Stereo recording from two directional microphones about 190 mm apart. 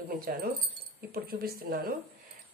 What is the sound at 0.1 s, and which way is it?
Speech, 50° right (ahead or behind).